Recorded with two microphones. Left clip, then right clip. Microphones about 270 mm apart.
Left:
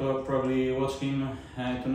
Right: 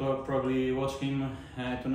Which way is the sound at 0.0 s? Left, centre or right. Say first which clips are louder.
Left 2 dB; centre.